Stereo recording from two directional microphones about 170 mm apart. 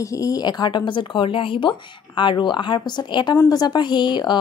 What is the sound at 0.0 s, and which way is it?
Speech, 20° left (ahead or behind).